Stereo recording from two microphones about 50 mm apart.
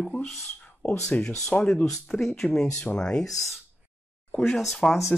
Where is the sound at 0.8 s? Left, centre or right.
Left.